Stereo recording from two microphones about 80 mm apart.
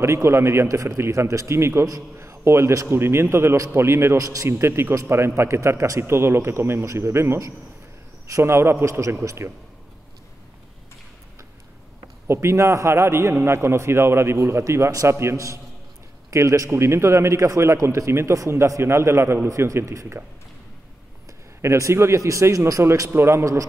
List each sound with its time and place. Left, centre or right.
0.0 s a man's voice: right
12.3 s a man's voice: right
21.3 s a man's voice: right